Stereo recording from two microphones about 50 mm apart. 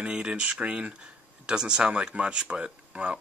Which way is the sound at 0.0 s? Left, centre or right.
Right.